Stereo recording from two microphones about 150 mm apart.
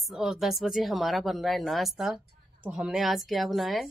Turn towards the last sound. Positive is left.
turn(degrees=0)  # may be behind; listen again after turning